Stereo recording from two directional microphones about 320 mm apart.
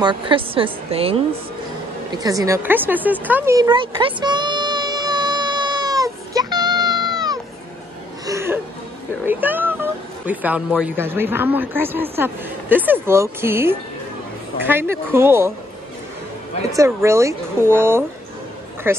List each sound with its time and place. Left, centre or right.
0.0 s speech: centre
2.1 s a sound: centre
8.3 s laughter: centre
9.2 s speech: centre
16.7 s speech: centre